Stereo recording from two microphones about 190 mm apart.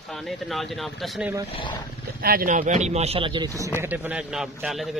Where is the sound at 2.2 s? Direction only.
50° right (ahead or behind); by 3.5 s 25° right (ahead or behind).